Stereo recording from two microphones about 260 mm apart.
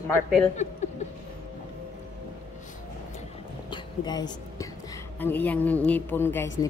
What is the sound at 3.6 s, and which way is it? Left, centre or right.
Music, centre.